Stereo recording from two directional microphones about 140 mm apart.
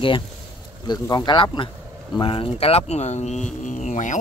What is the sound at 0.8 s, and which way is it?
Speech, 30° left (ahead or behind).